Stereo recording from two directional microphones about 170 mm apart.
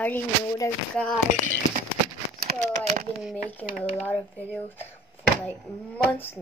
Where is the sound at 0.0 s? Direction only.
10° left (ahead or behind).